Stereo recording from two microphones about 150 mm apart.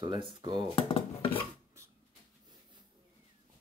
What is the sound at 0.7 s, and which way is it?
Dishes, 35° left (ahead or behind).